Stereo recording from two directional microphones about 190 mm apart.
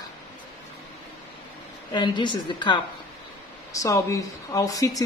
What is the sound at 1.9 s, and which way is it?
Speech, 25° left (ahead or behind).